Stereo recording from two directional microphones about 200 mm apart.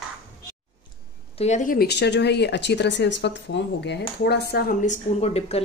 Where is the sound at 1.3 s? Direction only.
35° left (ahead or behind).